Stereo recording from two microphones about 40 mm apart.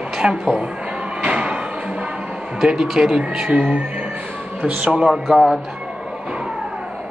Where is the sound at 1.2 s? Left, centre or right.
Right.